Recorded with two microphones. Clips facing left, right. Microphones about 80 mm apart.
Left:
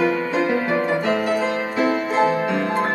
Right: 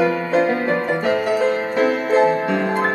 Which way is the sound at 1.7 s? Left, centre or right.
Right.